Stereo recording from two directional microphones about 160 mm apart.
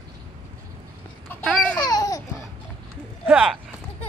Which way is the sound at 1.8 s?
25° left (ahead or behind).